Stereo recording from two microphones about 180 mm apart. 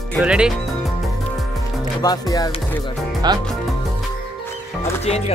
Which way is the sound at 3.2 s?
25° right (ahead or behind).